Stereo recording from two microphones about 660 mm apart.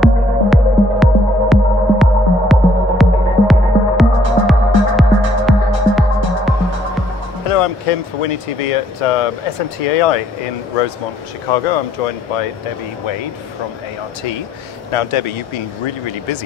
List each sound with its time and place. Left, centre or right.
0.0 s music: centre
7.4 s speech: left
11.5 s speech: left
14.9 s speech: left